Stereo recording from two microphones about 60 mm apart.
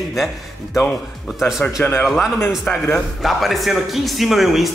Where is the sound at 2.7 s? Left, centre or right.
Left.